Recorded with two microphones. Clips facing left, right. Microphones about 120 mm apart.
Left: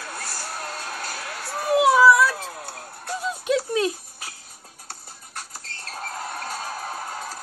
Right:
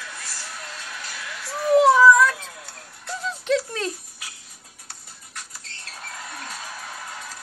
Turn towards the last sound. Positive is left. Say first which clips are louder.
# left 5 dB
turn(degrees=40)  # may be behind; listen again after turning